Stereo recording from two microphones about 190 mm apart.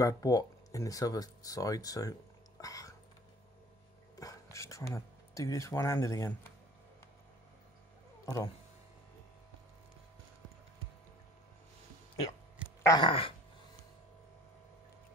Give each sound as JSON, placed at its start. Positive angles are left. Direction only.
{"t": 0.0, "sound": "speech", "side_deg": 20}
{"t": 2.6, "sound": "a sound", "side_deg": 15}
{"t": 4.2, "sound": "speech", "side_deg": 15}
{"t": 12.8, "sound": "speech", "side_deg": 25}